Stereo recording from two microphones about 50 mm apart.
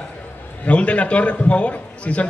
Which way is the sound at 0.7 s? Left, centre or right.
Left.